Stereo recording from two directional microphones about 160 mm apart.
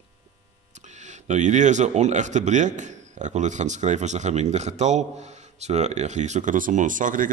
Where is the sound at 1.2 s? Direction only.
50° right (ahead or behind).